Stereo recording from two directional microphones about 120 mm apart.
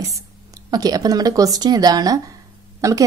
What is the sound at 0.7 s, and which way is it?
A woman's voice, 30° right (ahead or behind).